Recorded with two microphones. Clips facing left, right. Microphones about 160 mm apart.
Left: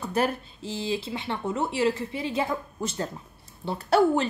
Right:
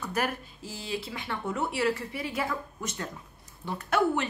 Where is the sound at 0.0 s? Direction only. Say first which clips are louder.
Left 5 dB; 30° left (ahead or behind).